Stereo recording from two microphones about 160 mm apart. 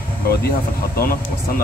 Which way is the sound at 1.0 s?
65° left (ahead or behind).